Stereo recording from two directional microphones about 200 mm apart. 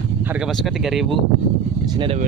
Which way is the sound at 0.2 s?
10° right (ahead or behind).